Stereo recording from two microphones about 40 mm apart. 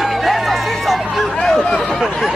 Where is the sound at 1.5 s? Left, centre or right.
Centre.